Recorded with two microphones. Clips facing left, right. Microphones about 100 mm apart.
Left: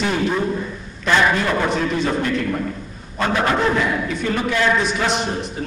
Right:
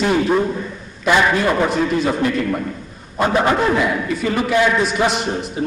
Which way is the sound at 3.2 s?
20° right (ahead or behind).